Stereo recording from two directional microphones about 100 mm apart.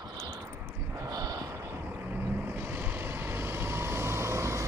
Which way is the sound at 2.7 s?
20° right (ahead or behind).